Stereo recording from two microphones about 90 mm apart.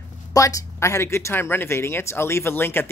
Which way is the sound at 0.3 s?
40° left (ahead or behind).